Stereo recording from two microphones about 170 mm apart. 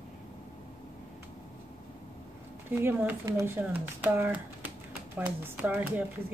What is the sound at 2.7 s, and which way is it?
Speech, 15° right (ahead or behind).